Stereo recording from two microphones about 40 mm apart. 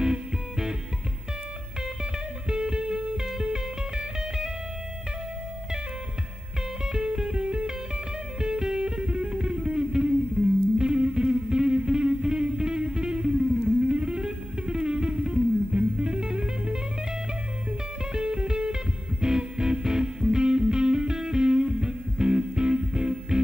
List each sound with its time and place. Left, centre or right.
0.0 s music: centre
2.5 s music: centre
6.9 s music: centre
18.1 s music: right